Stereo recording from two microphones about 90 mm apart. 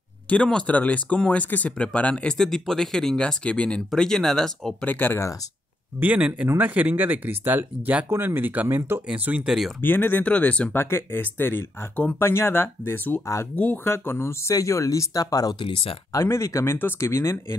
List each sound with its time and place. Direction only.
0.3 s speech: 10° left (ahead or behind)
4.8 s speech: 20° left (ahead or behind)
5.9 s speech: 15° right (ahead or behind)
9.8 s speech: 20° left (ahead or behind)
10.8 s speech: 30° left (ahead or behind); by 15.5 s 45° left (ahead or behind)
15.6 s speech: 90° left
16.1 s speech: 35° left (ahead or behind)